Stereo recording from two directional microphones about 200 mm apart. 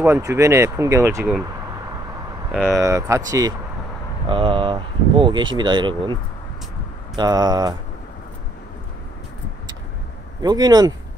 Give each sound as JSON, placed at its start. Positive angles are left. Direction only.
{"t": 0.0, "sound": "speech", "side_deg": -15}
{"t": 2.5, "sound": "speech", "side_deg": 0}
{"t": 2.8, "sound": "speech", "side_deg": -15}
{"t": 7.2, "sound": "speech", "side_deg": -20}
{"t": 10.4, "sound": "speech", "side_deg": -20}